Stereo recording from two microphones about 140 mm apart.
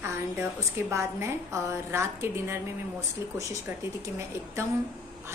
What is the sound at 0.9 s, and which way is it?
A woman's voice, 20° right (ahead or behind).